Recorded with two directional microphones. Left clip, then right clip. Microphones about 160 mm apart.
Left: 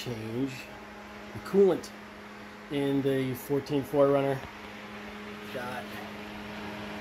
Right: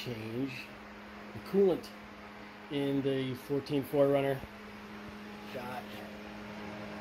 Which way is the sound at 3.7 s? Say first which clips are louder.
Left 4 dB; 10° right (ahead or behind).